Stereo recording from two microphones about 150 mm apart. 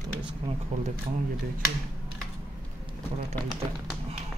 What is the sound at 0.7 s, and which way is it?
Speech, 50° right (ahead or behind).